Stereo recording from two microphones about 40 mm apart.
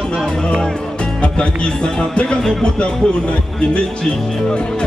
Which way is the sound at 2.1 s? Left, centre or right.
Left.